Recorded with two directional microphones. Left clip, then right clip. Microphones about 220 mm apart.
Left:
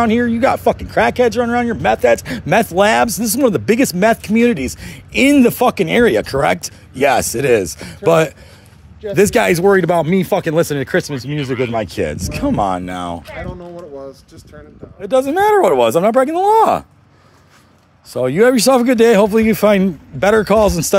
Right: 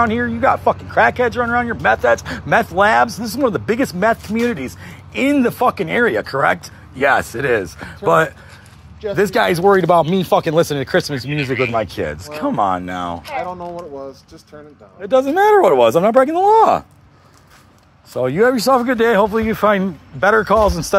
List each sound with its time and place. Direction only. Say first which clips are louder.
0.0 s speech: left 1 dB; 65° left (ahead or behind)
15.0 s speech: even; 55° left (ahead or behind)
18.1 s speech: left 2 dB; 60° left (ahead or behind)